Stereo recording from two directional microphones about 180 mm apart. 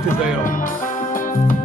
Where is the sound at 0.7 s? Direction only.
50° left (ahead or behind).